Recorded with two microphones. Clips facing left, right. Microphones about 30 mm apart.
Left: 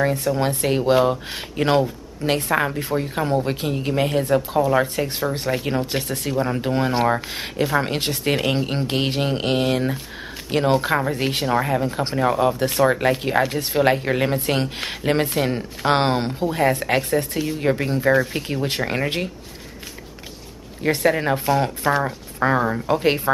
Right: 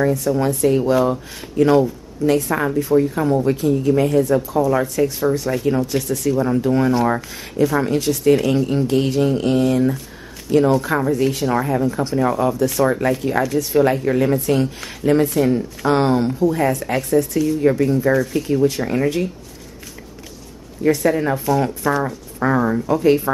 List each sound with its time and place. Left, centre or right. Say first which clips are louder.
0.0 s speech: right 3 dB; left
1.6 s speech: right 5 dB; left
5.0 s speech: right 6 dB; centre
5.3 s speech: right 4 dB; left
6.3 s speech: right 3 dB; left
11.6 s speech: right 2 dB; left
20.8 s speech: right 2 dB; left
22.6 s speech: right 3 dB; centre
22.8 s speech: right 4 dB; left